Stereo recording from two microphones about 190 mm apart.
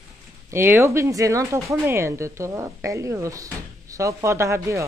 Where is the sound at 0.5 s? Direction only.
15° right (ahead or behind).